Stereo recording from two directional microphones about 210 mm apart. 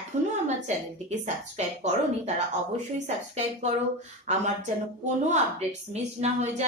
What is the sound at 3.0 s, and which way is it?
Speech, 30° right (ahead or behind).